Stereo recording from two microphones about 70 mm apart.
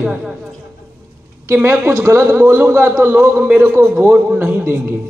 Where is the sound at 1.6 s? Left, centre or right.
Right.